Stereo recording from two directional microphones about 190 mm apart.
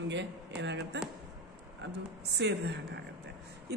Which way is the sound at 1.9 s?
60° right (ahead or behind).